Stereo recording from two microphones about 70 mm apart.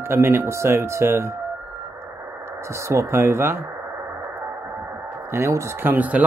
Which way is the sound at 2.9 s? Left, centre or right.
Right.